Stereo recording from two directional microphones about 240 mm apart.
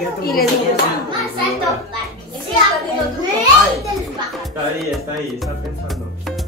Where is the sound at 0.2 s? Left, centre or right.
Left.